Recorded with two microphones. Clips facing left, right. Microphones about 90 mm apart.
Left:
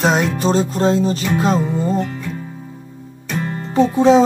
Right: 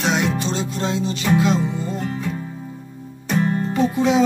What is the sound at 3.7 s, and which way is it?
Speech, 30° left (ahead or behind).